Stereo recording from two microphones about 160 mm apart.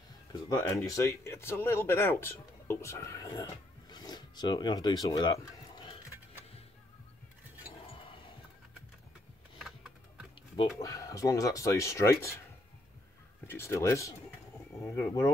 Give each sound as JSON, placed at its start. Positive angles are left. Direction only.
{"t": 0.6, "sound": "speech", "side_deg": 15}
{"t": 3.9, "sound": "a sound", "side_deg": 25}
{"t": 7.9, "sound": "a sound", "side_deg": 35}
{"t": 9.6, "sound": "typing", "side_deg": -5}
{"t": 10.8, "sound": "speech", "side_deg": 20}
{"t": 13.5, "sound": "speech", "side_deg": 15}